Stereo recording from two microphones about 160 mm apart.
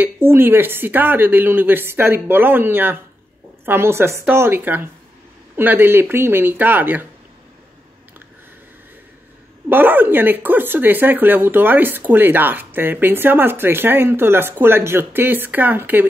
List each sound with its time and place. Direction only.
0.0 s speech: 15° right (ahead or behind)
9.7 s speech: 10° right (ahead or behind)